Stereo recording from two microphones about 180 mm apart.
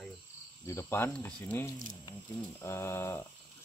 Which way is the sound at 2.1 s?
25° left (ahead or behind).